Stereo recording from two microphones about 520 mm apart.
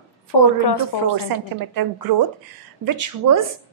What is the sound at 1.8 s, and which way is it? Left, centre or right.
Speech, right.